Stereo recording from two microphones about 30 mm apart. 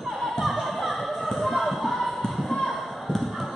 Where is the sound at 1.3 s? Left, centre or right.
Centre.